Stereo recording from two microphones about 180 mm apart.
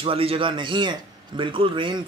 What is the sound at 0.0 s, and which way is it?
A man's voice, 30° right (ahead or behind).